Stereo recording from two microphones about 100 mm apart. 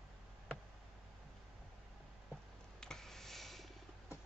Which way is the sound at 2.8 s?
5° left (ahead or behind).